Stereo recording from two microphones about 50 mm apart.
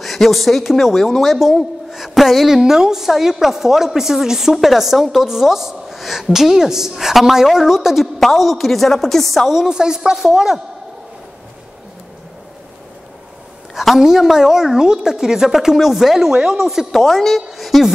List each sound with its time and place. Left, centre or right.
0.0 s a woman's voice: centre
9.5 s a woman's voice: centre
13.7 s a woman's voice: centre
16.9 s a woman's voice: centre